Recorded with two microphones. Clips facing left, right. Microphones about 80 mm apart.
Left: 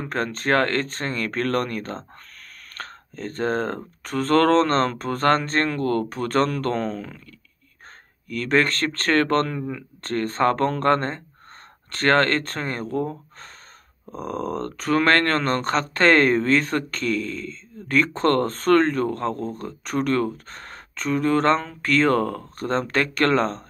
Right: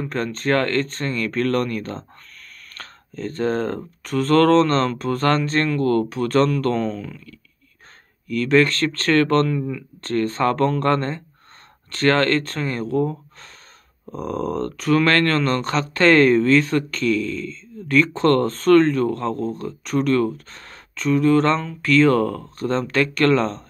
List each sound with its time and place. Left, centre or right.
0.0 s speech: left
8.3 s speech: left